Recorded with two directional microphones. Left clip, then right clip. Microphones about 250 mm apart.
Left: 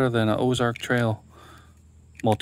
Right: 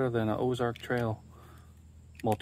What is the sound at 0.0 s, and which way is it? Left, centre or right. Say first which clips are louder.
Speech: left 7 dB; left.